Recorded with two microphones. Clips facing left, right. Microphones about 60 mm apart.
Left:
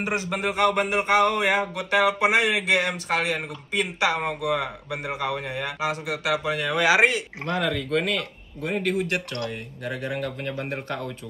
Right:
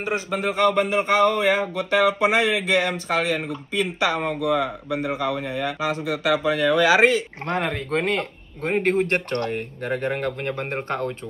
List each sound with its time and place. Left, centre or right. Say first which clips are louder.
0.0 s speech: right 2 dB; left
7.4 s speech: right 1 dB; right